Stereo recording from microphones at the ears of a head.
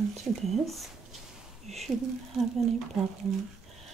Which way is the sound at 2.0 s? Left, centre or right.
Right.